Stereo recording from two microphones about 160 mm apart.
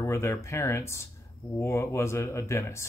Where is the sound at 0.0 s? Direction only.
15° left (ahead or behind).